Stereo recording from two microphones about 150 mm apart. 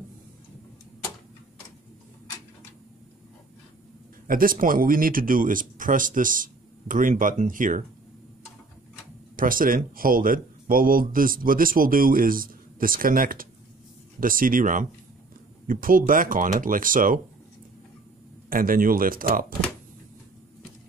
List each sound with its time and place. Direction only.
4.3 s speech: 70° right (ahead or behind)
9.4 s speech: 65° right (ahead or behind)
18.5 s speech: 70° right (ahead or behind)